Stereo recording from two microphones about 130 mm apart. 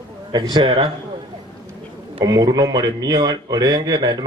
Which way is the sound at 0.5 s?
45° right (ahead or behind).